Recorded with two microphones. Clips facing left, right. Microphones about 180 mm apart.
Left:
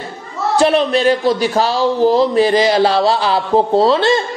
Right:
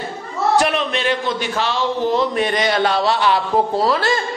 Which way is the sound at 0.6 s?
30° left (ahead or behind).